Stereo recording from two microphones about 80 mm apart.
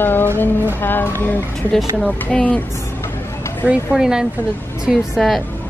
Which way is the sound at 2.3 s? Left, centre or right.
Centre.